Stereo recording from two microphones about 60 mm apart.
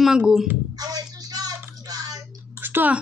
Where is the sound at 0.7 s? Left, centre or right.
Right.